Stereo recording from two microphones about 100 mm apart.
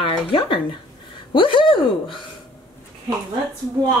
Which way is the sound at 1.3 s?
55° left (ahead or behind).